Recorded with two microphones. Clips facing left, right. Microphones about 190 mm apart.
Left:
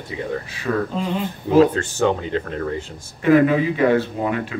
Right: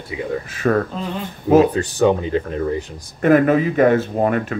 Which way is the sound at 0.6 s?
55° right (ahead or behind).